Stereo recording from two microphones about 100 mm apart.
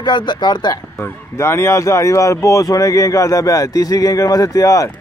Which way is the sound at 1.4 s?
25° left (ahead or behind).